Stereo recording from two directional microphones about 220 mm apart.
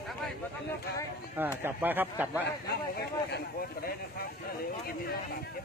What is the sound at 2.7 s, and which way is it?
Speech, 45° left (ahead or behind).